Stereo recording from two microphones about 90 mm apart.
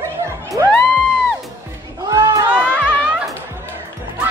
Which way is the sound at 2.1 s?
45° right (ahead or behind).